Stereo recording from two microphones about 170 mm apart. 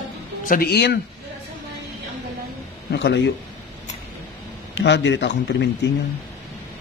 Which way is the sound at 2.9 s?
80° left.